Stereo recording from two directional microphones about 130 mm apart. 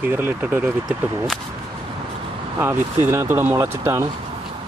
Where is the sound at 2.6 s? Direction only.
15° right (ahead or behind).